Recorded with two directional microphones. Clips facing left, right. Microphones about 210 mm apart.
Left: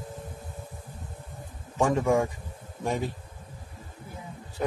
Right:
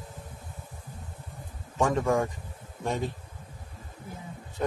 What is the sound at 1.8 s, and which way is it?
Speech, 5° left (ahead or behind).